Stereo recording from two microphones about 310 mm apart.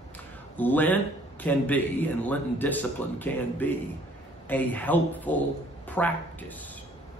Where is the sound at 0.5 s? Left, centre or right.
Centre.